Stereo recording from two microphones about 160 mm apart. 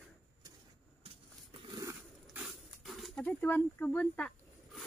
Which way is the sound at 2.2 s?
5° right (ahead or behind).